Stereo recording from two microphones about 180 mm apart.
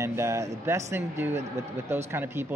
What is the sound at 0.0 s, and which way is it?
Speech, 15° right (ahead or behind).